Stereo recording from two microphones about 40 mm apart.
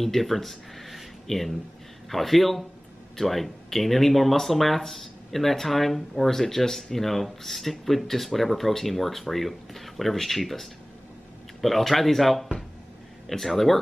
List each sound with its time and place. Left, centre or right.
0.0 s speech: centre